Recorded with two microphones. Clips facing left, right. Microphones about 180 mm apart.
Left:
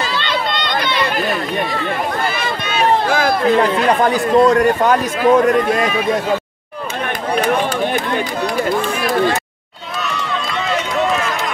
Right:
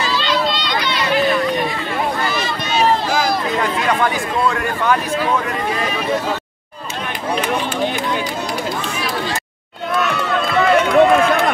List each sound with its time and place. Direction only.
0.1 s run: 55° left (ahead or behind)
2.2 s run: 55° left (ahead or behind)
3.5 s speech: 35° left (ahead or behind)
8.6 s run: 55° left (ahead or behind)
10.6 s run: 55° right (ahead or behind)